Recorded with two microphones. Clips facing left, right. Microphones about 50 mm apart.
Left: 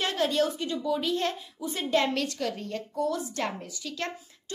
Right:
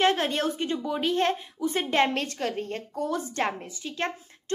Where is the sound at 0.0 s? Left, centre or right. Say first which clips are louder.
Right 2 dB; right.